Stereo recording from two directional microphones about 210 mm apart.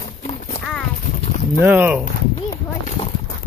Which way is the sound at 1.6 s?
5° right (ahead or behind).